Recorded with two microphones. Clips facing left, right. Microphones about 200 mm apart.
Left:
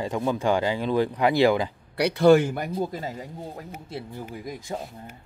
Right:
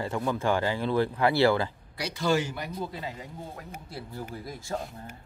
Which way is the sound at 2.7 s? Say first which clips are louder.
Left 6 dB; 45° left (ahead or behind).